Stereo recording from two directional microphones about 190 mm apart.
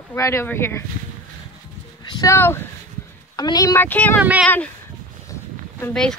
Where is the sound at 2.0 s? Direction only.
20° left (ahead or behind).